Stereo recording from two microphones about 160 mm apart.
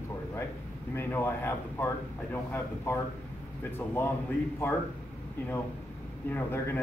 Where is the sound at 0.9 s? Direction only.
15° left (ahead or behind).